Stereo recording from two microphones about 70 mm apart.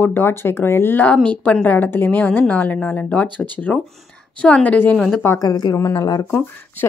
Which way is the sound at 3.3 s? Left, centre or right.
Right.